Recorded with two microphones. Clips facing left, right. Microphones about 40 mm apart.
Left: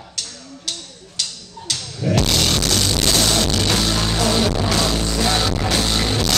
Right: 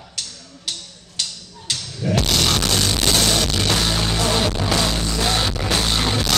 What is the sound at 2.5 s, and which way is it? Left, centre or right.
Music, centre.